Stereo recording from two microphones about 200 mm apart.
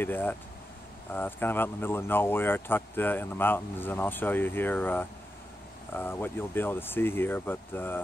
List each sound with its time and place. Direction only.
0.0 s speech: 10° left (ahead or behind)